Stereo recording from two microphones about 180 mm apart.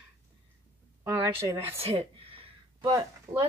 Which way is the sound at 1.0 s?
15° right (ahead or behind).